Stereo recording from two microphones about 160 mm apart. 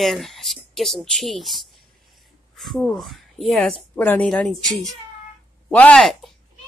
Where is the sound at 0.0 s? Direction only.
Centre (ahead or behind).